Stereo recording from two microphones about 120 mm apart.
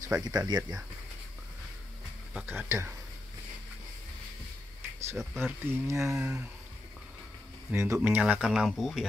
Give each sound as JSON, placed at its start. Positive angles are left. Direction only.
{"t": 0.1, "sound": "speech", "side_deg": -30}
{"t": 2.3, "sound": "speech", "side_deg": -15}
{"t": 5.1, "sound": "speech", "side_deg": 0}
{"t": 5.7, "sound": "speech", "side_deg": -25}
{"t": 6.1, "sound": "speech", "side_deg": -5}
{"t": 7.7, "sound": "speech", "side_deg": -25}